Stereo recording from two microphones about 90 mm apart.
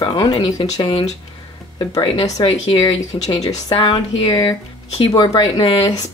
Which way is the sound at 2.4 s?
50° left (ahead or behind).